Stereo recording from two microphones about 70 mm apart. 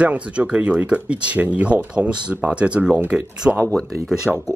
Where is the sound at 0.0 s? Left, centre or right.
Centre.